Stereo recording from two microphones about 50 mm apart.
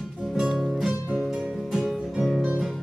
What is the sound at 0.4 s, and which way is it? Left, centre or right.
Music, centre.